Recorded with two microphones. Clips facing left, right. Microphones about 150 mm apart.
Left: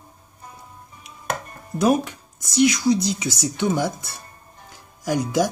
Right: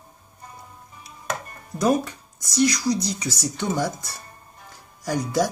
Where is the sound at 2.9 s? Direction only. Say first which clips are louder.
Left 4 dB; 25° left (ahead or behind).